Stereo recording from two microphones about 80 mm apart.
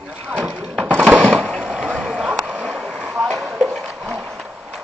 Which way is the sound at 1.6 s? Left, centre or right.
Centre.